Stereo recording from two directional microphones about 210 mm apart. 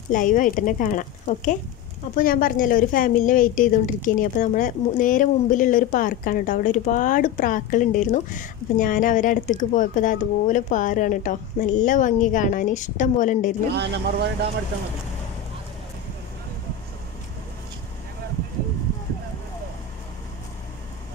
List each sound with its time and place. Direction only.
0.1 s a woman's voice: 40° left (ahead or behind)
13.7 s speech: 55° right (ahead or behind)